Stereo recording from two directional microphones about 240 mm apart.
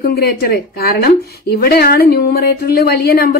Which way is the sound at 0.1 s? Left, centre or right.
Left.